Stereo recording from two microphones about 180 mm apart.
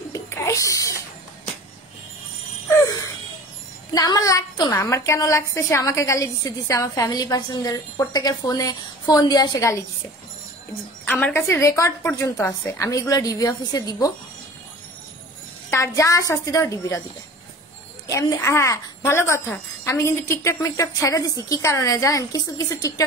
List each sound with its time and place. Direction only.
0.1 s a sound: 15° left (ahead or behind)
3.9 s a woman's voice: 20° left (ahead or behind)
11.1 s speech: 10° left (ahead or behind)
15.7 s speech: 15° left (ahead or behind)
18.0 s speech: 20° left (ahead or behind)